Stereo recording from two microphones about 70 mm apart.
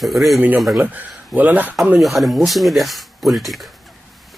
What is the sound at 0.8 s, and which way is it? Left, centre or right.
Speech, right.